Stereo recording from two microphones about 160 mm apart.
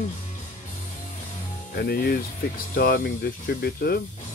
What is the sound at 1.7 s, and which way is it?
Speech, 75° left (ahead or behind).